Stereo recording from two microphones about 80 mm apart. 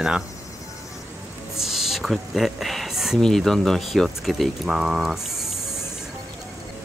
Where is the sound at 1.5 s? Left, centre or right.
Centre.